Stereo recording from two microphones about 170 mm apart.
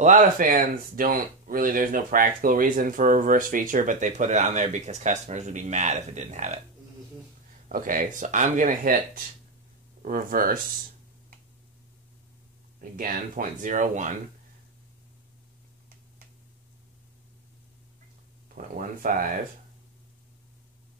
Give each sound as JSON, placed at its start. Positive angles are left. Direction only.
{"t": 0.0, "sound": "speech", "side_deg": -50}
{"t": 7.6, "sound": "speech", "side_deg": -55}
{"t": 10.0, "sound": "speech", "side_deg": -55}
{"t": 12.9, "sound": "speech", "side_deg": -55}
{"t": 18.5, "sound": "speech", "side_deg": -55}